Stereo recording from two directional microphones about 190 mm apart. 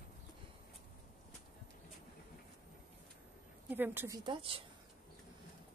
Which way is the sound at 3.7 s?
10° right (ahead or behind).